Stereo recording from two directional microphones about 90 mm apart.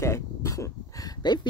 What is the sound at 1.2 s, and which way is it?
Speech, 55° left (ahead or behind).